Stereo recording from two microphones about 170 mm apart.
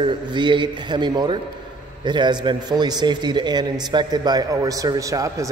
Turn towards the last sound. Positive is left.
turn(degrees=-20)  # may be behind; listen again after turning